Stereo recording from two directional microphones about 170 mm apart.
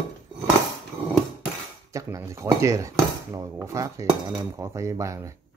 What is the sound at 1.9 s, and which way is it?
Speech, 20° right (ahead or behind).